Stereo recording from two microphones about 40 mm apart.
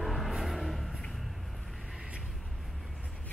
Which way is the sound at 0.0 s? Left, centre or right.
Centre.